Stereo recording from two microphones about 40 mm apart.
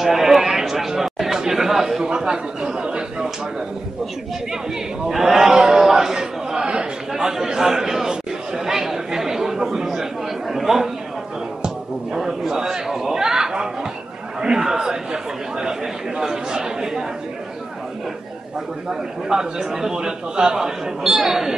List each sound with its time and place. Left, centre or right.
0.0 s chatter: centre
2.0 s a man's voice: right
5.1 s a man's voice: centre
5.6 s a sound: centre
12.1 s a sound: centre
14.4 s chatter: centre
16.2 s a man's voice: centre
18.9 s a man's voice: centre